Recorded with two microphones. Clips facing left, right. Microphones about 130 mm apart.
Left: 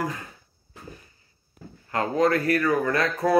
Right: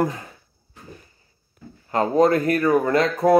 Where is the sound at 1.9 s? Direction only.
25° right (ahead or behind).